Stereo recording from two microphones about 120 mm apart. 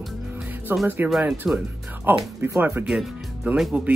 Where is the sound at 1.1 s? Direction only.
5° right (ahead or behind).